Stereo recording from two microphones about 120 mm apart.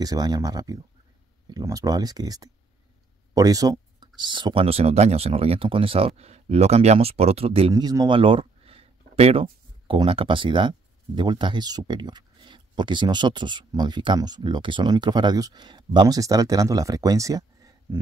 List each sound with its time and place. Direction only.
0.0 s speech: 35° right (ahead or behind); by 7.7 s 55° right (ahead or behind)
7.7 s speech: 30° right (ahead or behind)
8.2 s a sound: 45° right (ahead or behind)
10.0 s speech: 45° right (ahead or behind); by 17.7 s 30° right (ahead or behind)